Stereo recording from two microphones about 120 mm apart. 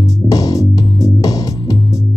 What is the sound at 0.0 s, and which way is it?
Music, 30° left (ahead or behind).